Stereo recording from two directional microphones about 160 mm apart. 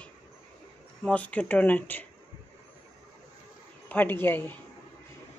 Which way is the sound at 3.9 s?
10° left (ahead or behind).